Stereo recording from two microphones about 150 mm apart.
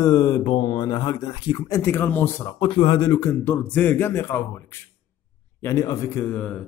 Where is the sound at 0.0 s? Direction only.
20° left (ahead or behind).